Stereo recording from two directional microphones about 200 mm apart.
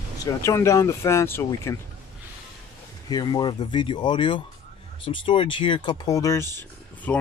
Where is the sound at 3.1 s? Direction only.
20° left (ahead or behind).